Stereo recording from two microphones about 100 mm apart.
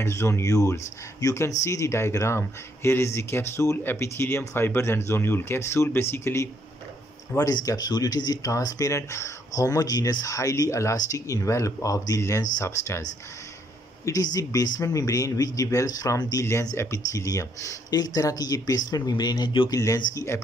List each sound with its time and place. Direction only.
0.0 s speech: 25° left (ahead or behind)
7.3 s speech: 40° left (ahead or behind)
14.0 s speech: 35° left (ahead or behind)
16.4 s speech: 25° left (ahead or behind); by 19.7 s 50° left (ahead or behind)
19.7 s speech: 35° left (ahead or behind)